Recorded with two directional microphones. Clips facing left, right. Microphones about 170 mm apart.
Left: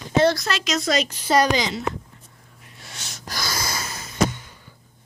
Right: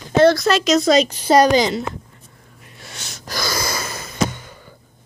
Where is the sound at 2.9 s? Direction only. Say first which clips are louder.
Right 4 dB; 85° right.